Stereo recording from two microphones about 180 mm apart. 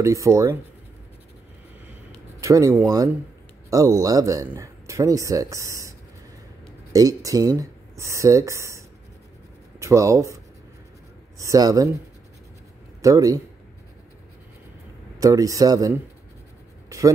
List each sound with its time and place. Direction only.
0.0 s speech: 15° right (ahead or behind)
2.4 s speech: 20° right (ahead or behind)
13.0 s speech: 20° right (ahead or behind)
15.1 s speech: 20° right (ahead or behind)